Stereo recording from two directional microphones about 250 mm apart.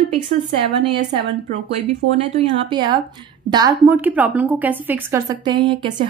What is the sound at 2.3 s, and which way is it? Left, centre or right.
A woman's voice, centre.